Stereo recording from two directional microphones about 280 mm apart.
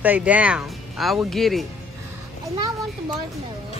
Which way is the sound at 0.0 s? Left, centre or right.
Centre.